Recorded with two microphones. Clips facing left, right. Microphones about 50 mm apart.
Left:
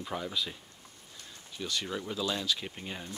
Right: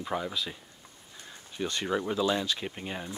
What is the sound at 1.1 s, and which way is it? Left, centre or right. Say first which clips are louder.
Speech: right 4 dB; right.